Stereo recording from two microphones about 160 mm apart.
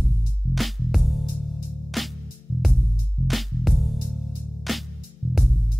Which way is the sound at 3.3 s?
Centre (ahead or behind).